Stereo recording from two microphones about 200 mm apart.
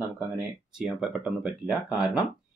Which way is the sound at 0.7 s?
5° right (ahead or behind).